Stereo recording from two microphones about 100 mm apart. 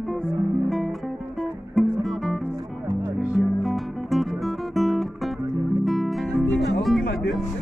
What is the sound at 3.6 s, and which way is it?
Music, centre (ahead or behind).